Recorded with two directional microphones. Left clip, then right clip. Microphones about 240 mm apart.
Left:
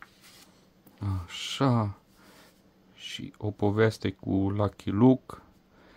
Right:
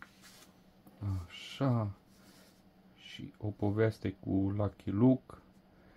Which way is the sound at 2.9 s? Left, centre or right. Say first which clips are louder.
Left 10 dB; left.